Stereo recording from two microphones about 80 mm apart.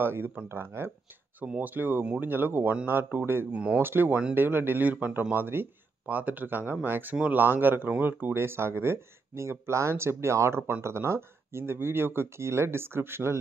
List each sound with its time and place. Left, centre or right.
0.0 s speech: right
1.4 s speech: centre
3.5 s speech: centre
3.8 s speech: right